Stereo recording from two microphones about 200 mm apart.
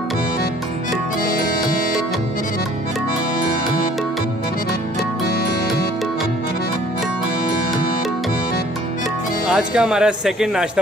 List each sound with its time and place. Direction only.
1.2 s music: 45° left (ahead or behind)
9.5 s speech: 5° right (ahead or behind)